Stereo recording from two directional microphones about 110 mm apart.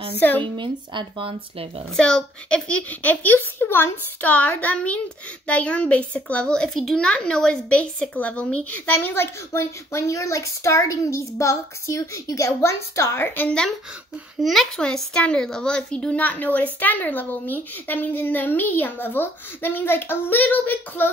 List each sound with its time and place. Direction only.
0.4 s speech: 50° right (ahead or behind)
2.0 s speech: 5° left (ahead or behind)